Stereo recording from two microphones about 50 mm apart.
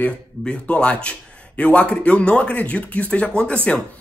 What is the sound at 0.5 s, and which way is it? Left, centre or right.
A man's voice, left.